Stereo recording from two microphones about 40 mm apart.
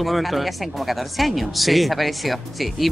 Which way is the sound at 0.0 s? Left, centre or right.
Centre.